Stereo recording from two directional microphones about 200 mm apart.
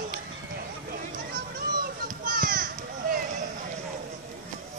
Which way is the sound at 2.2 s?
45° right (ahead or behind).